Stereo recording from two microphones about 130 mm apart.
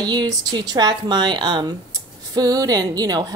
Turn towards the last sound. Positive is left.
turn(degrees=-30)  # may be behind; listen again after turning